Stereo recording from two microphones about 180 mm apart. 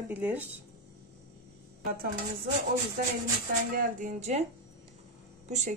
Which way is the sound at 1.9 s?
50° right (ahead or behind).